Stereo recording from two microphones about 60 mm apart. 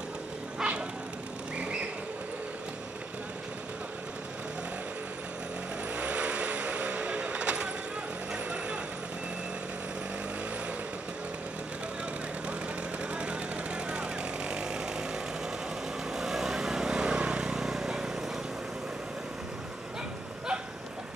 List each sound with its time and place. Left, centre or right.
0.6 s bow-wow: centre
1.6 s a sound: centre
5.9 s vehicle: right
13.1 s vehicle: centre
16.1 s vehicle: centre